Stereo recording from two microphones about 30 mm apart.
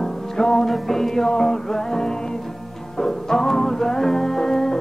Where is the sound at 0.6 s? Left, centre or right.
Centre.